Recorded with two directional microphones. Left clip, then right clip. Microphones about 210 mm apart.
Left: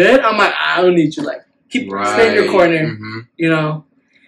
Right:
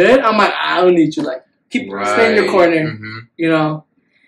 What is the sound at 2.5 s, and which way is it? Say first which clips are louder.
Speech: even; 25° right (ahead or behind).